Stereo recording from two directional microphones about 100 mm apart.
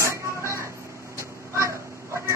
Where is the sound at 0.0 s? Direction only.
30° right (ahead or behind).